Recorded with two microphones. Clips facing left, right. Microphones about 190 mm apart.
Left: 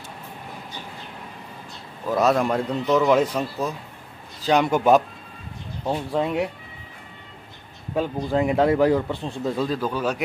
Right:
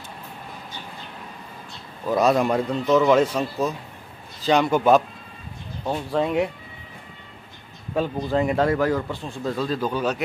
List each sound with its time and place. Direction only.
2.0 s speech: centre (ahead or behind)
7.9 s a man's voice: 10° left (ahead or behind)
9.4 s speech: 10° left (ahead or behind)